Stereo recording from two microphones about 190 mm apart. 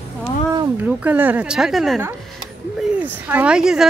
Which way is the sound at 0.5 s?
10° right (ahead or behind).